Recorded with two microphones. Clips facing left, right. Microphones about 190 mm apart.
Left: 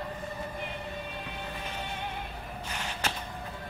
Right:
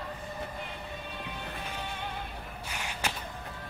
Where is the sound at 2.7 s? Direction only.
10° right (ahead or behind).